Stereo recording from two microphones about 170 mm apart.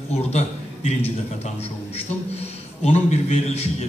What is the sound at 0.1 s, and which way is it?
A man's voice, 40° left (ahead or behind).